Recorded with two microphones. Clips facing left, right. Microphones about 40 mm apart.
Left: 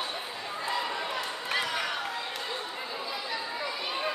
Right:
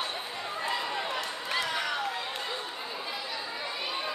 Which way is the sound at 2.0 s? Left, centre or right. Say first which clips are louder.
Right 1 dB; centre.